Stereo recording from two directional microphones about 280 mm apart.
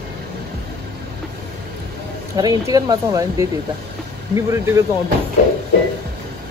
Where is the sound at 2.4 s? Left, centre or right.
Centre.